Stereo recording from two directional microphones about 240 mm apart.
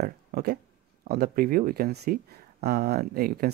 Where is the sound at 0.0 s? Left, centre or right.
Right.